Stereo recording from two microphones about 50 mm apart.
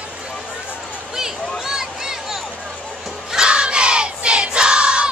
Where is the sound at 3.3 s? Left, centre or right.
Centre.